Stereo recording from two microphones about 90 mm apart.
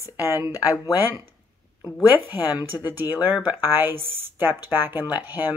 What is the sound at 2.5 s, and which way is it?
Speech, 20° right (ahead or behind).